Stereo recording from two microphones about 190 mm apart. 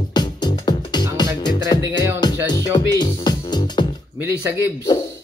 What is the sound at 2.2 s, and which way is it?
Music, 20° left (ahead or behind).